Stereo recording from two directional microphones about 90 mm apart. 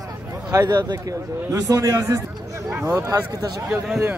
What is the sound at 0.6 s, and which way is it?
A man's voice, 50° right (ahead or behind).